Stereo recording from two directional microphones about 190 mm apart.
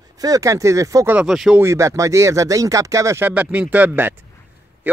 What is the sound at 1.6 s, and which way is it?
Speech, 15° right (ahead or behind).